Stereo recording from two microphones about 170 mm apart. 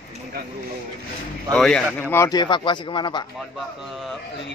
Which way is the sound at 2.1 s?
20° left (ahead or behind).